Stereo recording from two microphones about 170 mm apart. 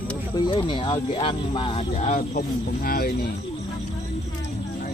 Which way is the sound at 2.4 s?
60° left (ahead or behind).